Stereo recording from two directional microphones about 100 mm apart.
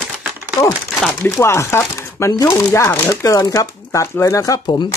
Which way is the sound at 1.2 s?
25° left (ahead or behind).